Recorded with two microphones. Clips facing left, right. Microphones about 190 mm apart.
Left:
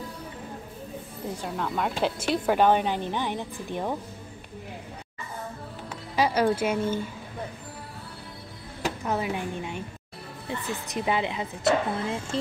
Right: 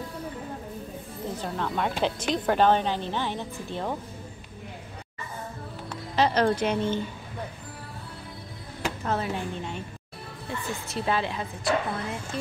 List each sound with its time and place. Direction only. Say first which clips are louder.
1.4 s a woman's voice: even; 5° left (ahead or behind)
6.1 s a woman's voice: even; 10° left (ahead or behind)
9.0 s a woman's voice: even; 10° left (ahead or behind)
10.9 s a woman's voice: left 1 dB; 15° left (ahead or behind)